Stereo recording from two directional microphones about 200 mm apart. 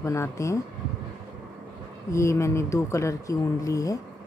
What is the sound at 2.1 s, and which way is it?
Speech, 15° left (ahead or behind).